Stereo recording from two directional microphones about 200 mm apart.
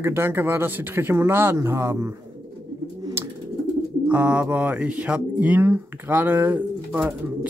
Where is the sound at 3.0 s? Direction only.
20° right (ahead or behind).